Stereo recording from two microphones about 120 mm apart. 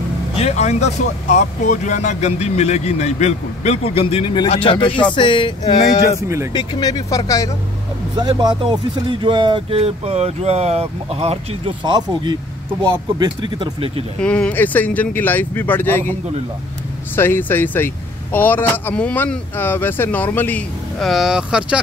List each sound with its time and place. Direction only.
0.4 s speech: 65° left (ahead or behind); by 5.5 s 45° left (ahead or behind)
6.2 s speech: 25° right (ahead or behind)
6.5 s speech: 35° left (ahead or behind)
8.2 s speech: 35° right (ahead or behind); by 14.0 s 50° right (ahead or behind)
14.2 s speech: 10° left (ahead or behind)
17.1 s speech: 20° left (ahead or behind)
21.0 s speech: centre (ahead or behind)